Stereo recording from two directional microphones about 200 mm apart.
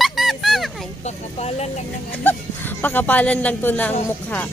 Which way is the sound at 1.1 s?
35° left (ahead or behind).